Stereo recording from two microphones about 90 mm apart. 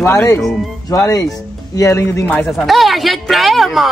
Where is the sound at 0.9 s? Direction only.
40° left (ahead or behind).